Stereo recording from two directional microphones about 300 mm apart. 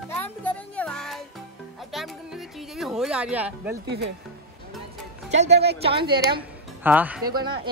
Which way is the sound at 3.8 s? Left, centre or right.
Right.